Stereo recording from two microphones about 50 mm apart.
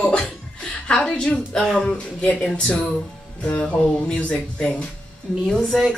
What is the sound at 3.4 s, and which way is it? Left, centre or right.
Speech, left.